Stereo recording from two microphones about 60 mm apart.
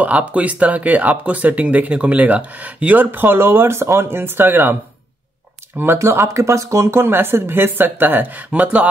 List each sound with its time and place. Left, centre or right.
0.0 s speech: right
5.9 s speech: right
8.5 s speech: right